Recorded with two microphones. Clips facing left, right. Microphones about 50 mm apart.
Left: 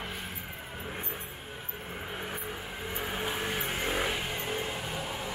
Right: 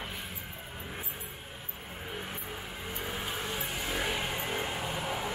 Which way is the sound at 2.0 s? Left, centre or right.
Centre.